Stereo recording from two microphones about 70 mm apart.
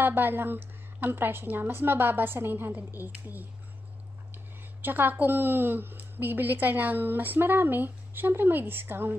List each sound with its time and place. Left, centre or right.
0.0 s a woman's voice: right
4.8 s a woman's voice: right